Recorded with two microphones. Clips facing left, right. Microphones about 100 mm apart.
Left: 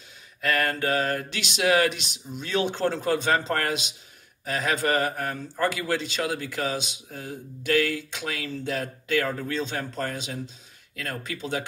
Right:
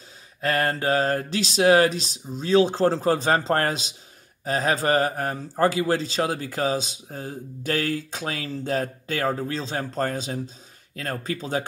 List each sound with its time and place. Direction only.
0.4 s a man's voice: 35° right (ahead or behind)